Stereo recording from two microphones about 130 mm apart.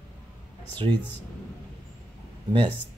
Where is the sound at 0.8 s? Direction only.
45° right (ahead or behind).